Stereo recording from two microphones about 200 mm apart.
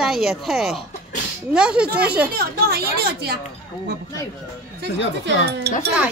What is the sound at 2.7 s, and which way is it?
Speech, 50° right (ahead or behind).